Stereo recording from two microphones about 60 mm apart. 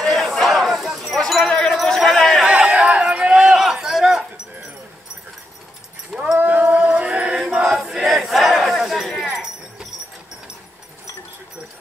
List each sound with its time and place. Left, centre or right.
0.0 s crowd: centre
1.3 s wind chime: centre
2.8 s a sound: centre
6.1 s a sound: centre
6.4 s chant: right
7.9 s crowd: centre
9.3 s jingle bell: centre